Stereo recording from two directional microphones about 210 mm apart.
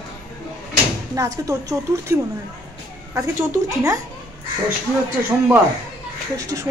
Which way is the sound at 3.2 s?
15° right (ahead or behind).